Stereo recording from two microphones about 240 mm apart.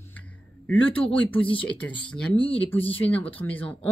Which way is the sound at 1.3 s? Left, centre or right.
Left.